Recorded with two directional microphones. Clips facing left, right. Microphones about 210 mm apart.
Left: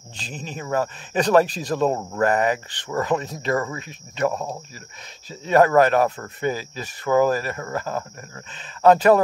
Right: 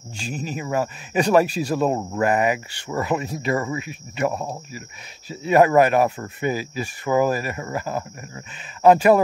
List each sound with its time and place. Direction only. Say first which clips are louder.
0.2 s speech: right 4 dB; 10° right (ahead or behind)